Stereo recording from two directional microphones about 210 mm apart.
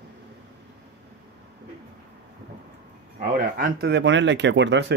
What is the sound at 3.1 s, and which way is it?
Speech, 45° right (ahead or behind).